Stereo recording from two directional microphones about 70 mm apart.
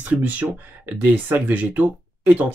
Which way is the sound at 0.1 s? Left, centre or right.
Right.